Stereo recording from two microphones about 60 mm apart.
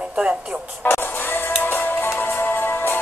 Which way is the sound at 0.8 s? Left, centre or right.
Left.